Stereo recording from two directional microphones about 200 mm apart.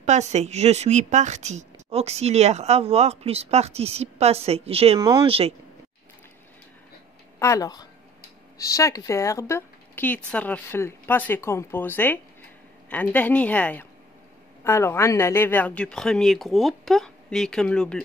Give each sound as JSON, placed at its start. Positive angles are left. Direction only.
{"t": 0.0, "sound": "speech", "side_deg": -35}
{"t": 7.3, "sound": "speech", "side_deg": 15}